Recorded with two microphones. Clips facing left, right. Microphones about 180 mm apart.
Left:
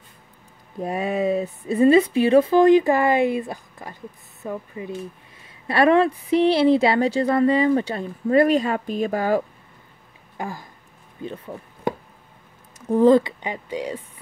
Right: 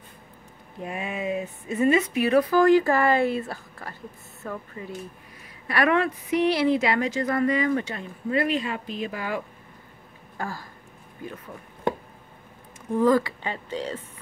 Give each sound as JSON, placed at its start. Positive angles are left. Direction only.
{"t": 0.7, "sound": "speech", "side_deg": 35}
{"t": 5.7, "sound": "a woman's voice", "side_deg": 30}
{"t": 10.3, "sound": "a sound", "side_deg": 20}
{"t": 12.9, "sound": "speech", "side_deg": 25}